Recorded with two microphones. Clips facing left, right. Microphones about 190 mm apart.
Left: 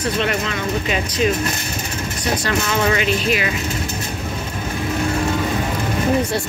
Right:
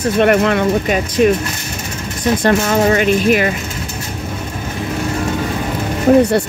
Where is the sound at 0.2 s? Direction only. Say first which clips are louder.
Right 10 dB; 60° right (ahead or behind).